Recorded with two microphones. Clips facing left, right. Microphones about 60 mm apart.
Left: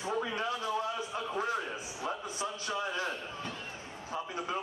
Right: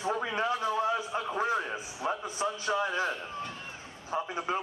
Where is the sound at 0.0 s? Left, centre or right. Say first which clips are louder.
Right 3 dB; right.